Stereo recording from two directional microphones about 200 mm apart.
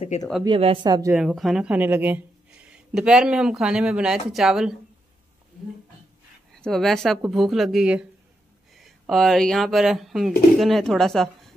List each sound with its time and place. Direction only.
0.5 s speech: 25° right (ahead or behind)
1.1 s speech: centre (ahead or behind)
6.5 s speech: centre (ahead or behind)